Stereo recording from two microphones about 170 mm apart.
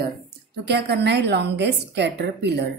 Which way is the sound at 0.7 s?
75° right (ahead or behind).